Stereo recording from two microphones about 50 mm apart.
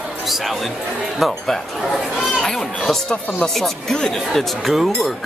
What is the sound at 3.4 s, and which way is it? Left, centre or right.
Speech, centre.